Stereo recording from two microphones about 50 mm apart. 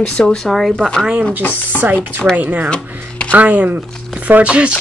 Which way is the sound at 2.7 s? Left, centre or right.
Left.